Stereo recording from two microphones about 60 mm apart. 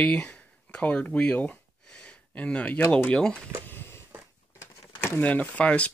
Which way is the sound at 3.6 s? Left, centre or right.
Left.